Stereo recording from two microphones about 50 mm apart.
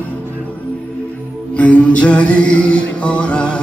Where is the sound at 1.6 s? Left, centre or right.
Left.